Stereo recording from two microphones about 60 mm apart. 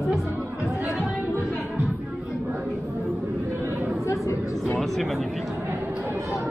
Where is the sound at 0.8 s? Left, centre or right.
Right.